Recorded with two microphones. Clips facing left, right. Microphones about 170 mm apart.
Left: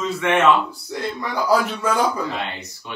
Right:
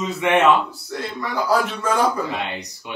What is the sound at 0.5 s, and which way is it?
A man's voice, centre (ahead or behind).